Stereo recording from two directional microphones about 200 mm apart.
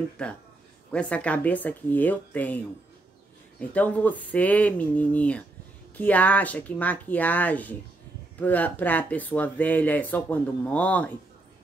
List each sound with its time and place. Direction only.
0.2 s a man's voice: 5° left (ahead or behind)